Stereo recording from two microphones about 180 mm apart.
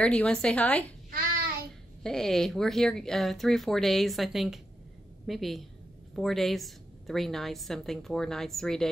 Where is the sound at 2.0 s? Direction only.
5° left (ahead or behind).